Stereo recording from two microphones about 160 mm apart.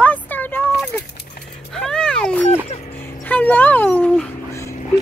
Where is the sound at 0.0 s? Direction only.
10° left (ahead or behind).